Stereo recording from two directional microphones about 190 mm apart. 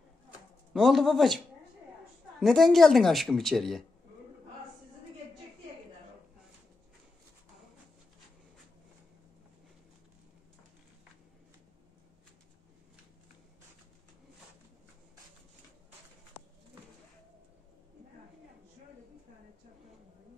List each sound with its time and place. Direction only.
0.7 s a woman's voice: centre (ahead or behind)
2.4 s a woman's voice: centre (ahead or behind)